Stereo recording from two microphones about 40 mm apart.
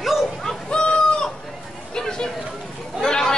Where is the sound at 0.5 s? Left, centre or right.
Left.